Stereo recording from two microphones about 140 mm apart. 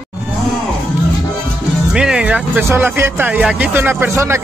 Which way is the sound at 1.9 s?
5° right (ahead or behind).